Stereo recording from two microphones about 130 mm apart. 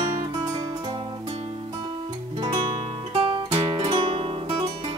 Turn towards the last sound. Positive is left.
turn(degrees=-45)  # may be behind; listen again after turning